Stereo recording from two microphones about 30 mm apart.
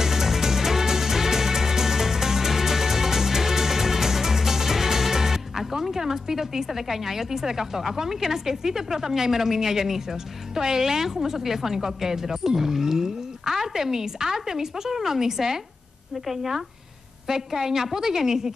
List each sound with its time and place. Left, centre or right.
0.0 s music: centre
10.5 s a woman's voice: centre
16.3 s speech: centre
17.3 s a woman's voice: centre